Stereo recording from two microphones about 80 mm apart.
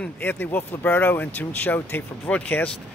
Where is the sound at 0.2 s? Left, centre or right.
Left.